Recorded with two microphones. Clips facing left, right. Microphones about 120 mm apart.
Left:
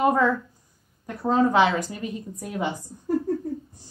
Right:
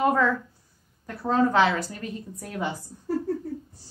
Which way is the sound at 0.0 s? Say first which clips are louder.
Left 2 dB; 15° left (ahead or behind).